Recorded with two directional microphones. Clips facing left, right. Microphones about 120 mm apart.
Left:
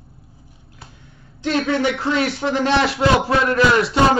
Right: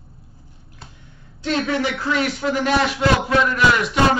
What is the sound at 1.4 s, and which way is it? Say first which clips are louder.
A man's voice: left 2 dB; 25° left (ahead or behind).